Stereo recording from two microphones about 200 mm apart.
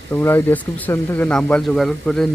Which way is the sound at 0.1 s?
10° left (ahead or behind).